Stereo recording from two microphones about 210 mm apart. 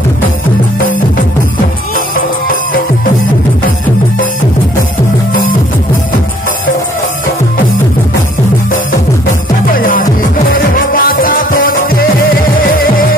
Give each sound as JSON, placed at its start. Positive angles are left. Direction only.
{"t": 2.1, "sound": "music", "side_deg": 40}
{"t": 9.7, "sound": "music", "side_deg": 40}